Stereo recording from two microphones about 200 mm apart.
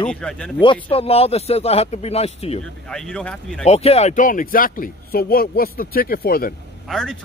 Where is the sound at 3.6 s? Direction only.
30° left (ahead or behind); by 6.5 s 50° left (ahead or behind).